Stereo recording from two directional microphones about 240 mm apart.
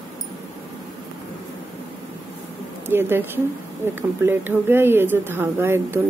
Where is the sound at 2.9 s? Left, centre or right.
Centre.